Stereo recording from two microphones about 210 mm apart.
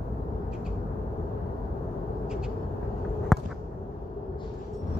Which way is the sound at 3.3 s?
Centre (ahead or behind).